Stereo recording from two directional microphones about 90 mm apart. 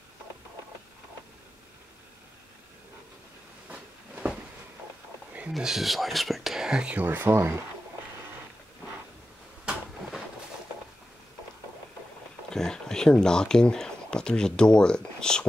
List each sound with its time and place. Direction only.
3.6 s a sound: 15° right (ahead or behind)
5.5 s speech: 5° right (ahead or behind)
7.1 s speech: 25° right (ahead or behind)
12.4 s speech: 5° left (ahead or behind)